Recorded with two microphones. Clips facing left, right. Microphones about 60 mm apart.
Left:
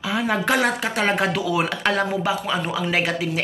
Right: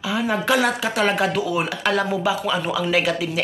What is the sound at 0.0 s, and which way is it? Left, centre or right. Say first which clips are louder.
A woman's voice: even; left.